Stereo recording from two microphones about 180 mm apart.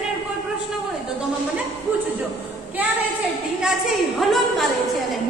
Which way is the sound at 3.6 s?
5° right (ahead or behind).